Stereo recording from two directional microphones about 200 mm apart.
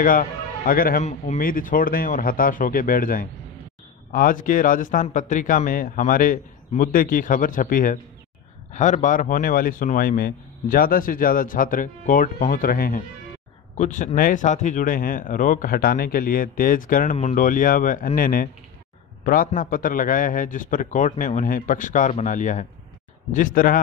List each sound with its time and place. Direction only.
0.0 s speech: 45° left (ahead or behind)
1.0 s a man's voice: 35° left (ahead or behind)